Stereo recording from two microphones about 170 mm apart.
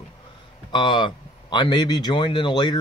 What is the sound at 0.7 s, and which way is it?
Speech, 30° left (ahead or behind).